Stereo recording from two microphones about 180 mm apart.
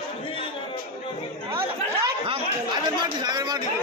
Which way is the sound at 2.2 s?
30° right (ahead or behind).